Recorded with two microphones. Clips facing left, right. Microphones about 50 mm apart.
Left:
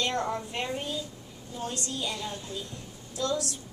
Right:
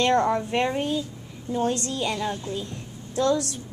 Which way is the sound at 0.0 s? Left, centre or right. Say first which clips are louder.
Right 9 dB; right.